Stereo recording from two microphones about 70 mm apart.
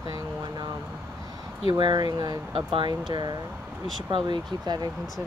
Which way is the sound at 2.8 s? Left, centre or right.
Right.